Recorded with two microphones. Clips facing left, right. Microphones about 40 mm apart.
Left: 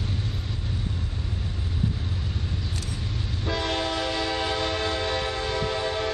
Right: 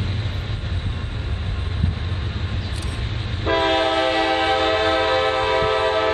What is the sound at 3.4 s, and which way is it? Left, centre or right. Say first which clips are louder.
Train: right 9 dB; right.